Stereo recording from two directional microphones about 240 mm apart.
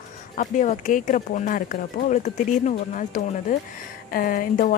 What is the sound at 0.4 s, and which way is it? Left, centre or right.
A woman's voice, left.